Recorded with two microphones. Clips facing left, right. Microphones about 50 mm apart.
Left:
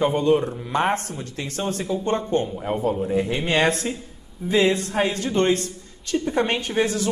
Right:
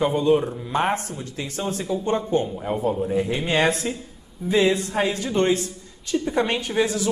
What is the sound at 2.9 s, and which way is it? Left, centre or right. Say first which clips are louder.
Speech: even; centre.